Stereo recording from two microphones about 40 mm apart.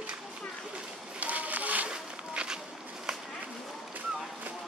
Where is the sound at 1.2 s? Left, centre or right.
Right.